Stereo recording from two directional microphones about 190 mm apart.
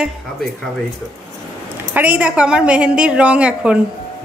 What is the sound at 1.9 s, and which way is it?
Speech, 10° right (ahead or behind).